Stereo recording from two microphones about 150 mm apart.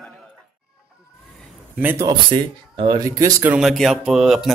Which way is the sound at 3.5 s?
Centre (ahead or behind).